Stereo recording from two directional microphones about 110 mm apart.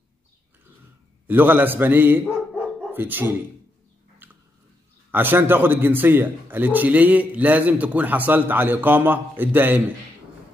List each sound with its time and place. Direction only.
1.2 s a man's voice: 20° right (ahead or behind)
4.2 s a sound: 15° right (ahead or behind)
5.1 s a man's voice: 20° right (ahead or behind)